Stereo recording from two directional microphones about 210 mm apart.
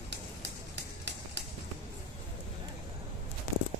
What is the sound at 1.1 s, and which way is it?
Run, 55° right (ahead or behind).